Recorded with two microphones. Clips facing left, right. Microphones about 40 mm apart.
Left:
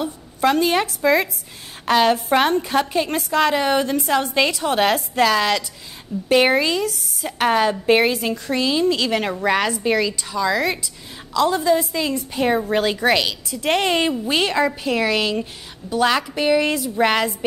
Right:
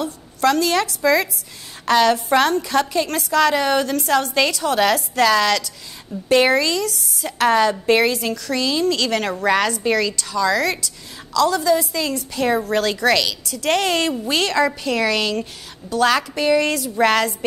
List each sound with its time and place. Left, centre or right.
0.0 s a woman's voice: centre
1.9 s a woman's voice: centre